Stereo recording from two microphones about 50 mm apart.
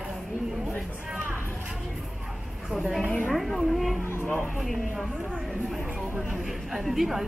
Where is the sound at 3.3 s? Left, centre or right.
Centre.